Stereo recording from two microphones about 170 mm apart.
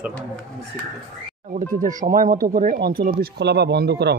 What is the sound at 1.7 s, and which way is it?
Speech, 50° right (ahead or behind).